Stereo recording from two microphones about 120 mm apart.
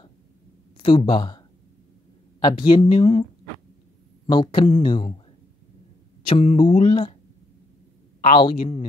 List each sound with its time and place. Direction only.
0.7 s speech: 45° left (ahead or behind)
2.4 s speech: 40° left (ahead or behind)
6.2 s speech: 55° left (ahead or behind); by 6.9 s 75° left (ahead or behind)
8.4 s speech: 50° left (ahead or behind)